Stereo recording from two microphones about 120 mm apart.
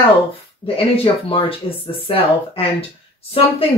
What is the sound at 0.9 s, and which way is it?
Speech, 50° left (ahead or behind).